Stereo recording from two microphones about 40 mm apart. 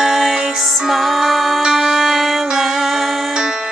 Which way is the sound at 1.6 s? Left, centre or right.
Centre.